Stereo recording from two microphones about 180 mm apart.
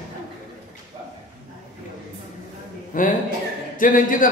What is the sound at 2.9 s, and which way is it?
A man's voice, 50° left (ahead or behind).